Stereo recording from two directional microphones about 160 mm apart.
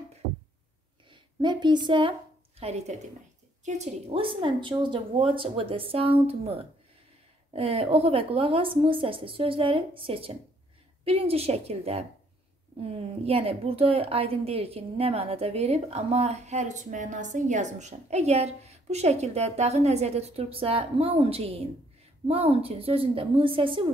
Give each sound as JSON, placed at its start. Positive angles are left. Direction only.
{"t": 1.1, "sound": "a woman's voice", "side_deg": -30}
{"t": 2.6, "sound": "a woman's voice", "side_deg": -40}